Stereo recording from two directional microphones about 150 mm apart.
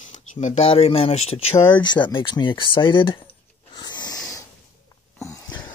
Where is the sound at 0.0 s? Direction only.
55° left (ahead or behind); by 3.2 s 35° left (ahead or behind).